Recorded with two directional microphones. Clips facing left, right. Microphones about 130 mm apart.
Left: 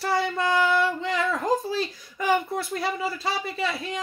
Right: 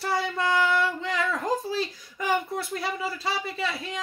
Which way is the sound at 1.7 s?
60° left (ahead or behind).